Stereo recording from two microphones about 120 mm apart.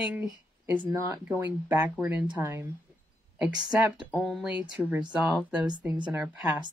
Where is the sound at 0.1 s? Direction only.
15° right (ahead or behind).